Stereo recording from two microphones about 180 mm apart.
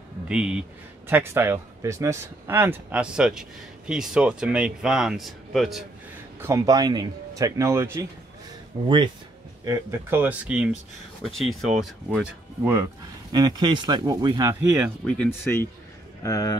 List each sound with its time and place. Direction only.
0.3 s a man's voice: 5° right (ahead or behind)
6.4 s speech: 20° right (ahead or behind)
8.8 s speech: 25° right (ahead or behind)
9.7 s a man's voice: 15° right (ahead or behind)
13.3 s speech: 25° right (ahead or behind)
14.8 s speech: 5° left (ahead or behind)